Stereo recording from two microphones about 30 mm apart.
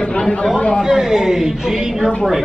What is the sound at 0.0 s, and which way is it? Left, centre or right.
Chatter, left.